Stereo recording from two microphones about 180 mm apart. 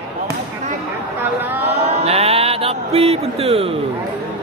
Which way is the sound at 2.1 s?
35° right (ahead or behind).